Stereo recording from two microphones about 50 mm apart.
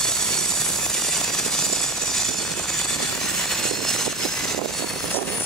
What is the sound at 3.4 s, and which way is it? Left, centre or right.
Vehicle, centre.